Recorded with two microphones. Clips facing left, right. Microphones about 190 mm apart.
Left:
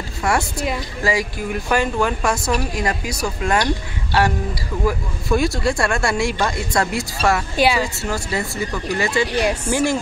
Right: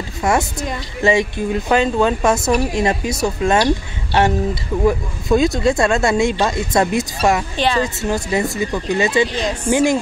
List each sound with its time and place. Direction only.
0.2 s speech: 20° right (ahead or behind)
7.5 s speech: 10° left (ahead or behind)
7.8 s speech: 20° right (ahead or behind)
9.3 s speech: 10° left (ahead or behind)
9.7 s speech: 15° right (ahead or behind)